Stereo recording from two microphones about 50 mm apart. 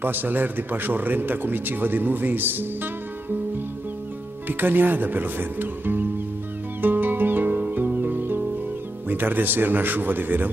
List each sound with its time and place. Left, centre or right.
0.0 s a man's voice: right
4.5 s a man's voice: right
6.8 s music: right
9.1 s a man's voice: right